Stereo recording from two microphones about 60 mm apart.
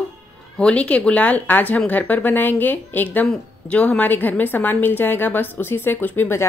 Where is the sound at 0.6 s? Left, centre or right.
Centre.